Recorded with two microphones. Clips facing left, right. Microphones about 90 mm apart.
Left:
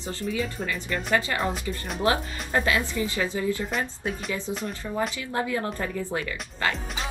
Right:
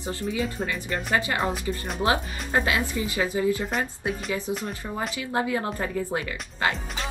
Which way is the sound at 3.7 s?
Centre (ahead or behind).